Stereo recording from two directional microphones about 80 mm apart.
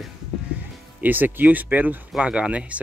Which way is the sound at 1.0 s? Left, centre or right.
Right.